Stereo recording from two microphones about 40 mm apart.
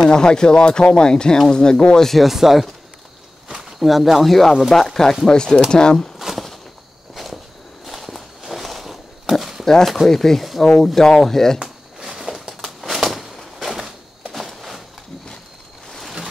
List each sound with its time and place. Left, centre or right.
0.0 s speech: centre
2.1 s speech: centre
3.8 s speech: centre
6.1 s a sound: centre
7.2 s walk: centre
9.3 s horse: centre
10.0 s speech: centre
11.6 s a sound: centre
15.9 s a sound: centre